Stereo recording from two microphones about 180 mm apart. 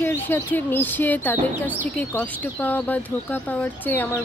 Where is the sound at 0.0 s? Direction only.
10° left (ahead or behind).